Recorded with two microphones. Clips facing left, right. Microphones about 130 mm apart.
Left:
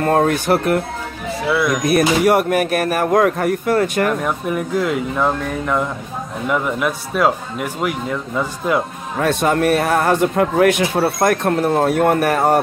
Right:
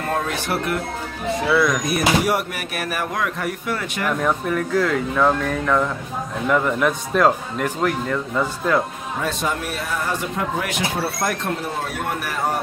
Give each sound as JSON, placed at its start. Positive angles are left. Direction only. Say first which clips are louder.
{"t": 0.0, "sound": "speech", "louder": "left 8 dB", "side_deg": 50}
{"t": 1.9, "sound": "speech", "louder": "left 5 dB", "side_deg": 55}
{"t": 4.2, "sound": "speech", "louder": "even", "side_deg": 10}
{"t": 9.2, "sound": "speech", "louder": "left 9 dB", "side_deg": 60}